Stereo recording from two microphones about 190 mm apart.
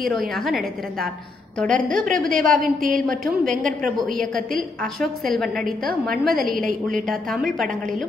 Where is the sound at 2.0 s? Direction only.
Centre (ahead or behind).